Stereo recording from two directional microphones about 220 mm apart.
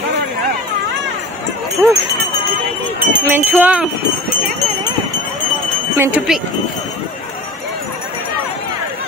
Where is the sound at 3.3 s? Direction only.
10° right (ahead or behind).